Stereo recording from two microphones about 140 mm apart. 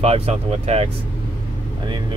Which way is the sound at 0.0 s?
50° right (ahead or behind).